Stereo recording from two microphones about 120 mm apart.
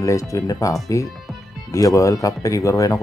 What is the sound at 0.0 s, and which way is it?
Speech, 25° left (ahead or behind).